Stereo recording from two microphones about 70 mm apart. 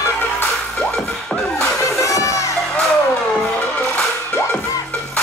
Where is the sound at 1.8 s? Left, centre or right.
Left.